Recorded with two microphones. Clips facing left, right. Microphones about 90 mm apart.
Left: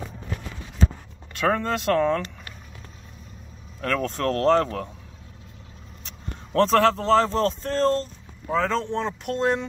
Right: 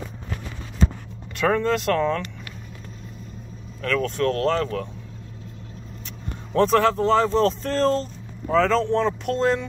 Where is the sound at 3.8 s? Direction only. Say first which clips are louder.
Right 2 dB; 40° left (ahead or behind).